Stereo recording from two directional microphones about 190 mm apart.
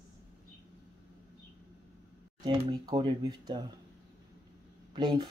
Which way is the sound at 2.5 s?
25° right (ahead or behind).